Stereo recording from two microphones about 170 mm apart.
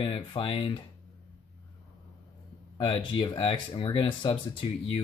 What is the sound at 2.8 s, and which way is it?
Speech, 30° left (ahead or behind).